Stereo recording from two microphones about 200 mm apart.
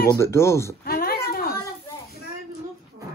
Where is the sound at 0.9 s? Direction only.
50° left (ahead or behind).